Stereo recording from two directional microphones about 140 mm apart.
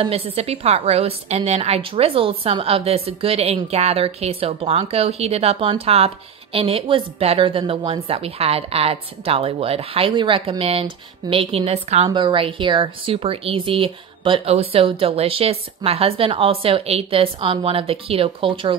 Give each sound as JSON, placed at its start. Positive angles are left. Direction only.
{"t": 0.0, "sound": "a woman's voice", "side_deg": -45}
{"t": 12.1, "sound": "speech", "side_deg": -35}